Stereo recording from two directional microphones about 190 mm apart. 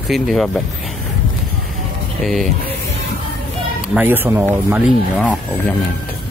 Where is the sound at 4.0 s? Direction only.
10° right (ahead or behind).